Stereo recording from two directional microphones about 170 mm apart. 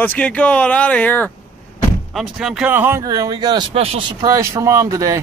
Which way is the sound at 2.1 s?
5° right (ahead or behind).